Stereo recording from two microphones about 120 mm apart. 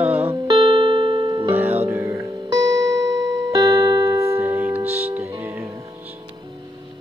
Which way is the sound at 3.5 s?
25° right (ahead or behind).